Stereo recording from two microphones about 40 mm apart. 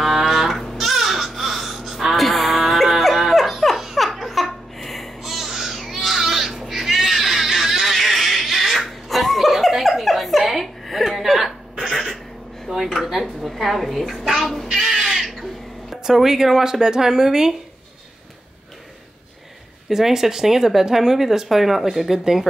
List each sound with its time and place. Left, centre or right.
0.0 s music: centre
12.7 s a sound: centre
14.7 s crow: centre
16.0 s speech: centre
19.9 s speech: centre